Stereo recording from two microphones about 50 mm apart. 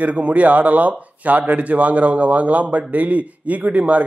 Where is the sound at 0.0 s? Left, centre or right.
Right.